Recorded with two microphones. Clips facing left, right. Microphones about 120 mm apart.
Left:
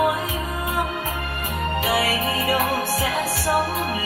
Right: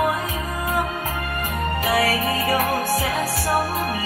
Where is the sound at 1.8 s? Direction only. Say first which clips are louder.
Right 2 dB; 30° left (ahead or behind).